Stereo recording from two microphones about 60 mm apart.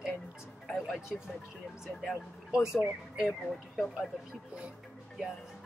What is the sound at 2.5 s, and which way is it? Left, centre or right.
Speech, centre.